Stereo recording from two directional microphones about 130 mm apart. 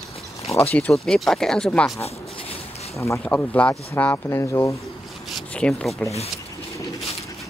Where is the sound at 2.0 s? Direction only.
50° left (ahead or behind).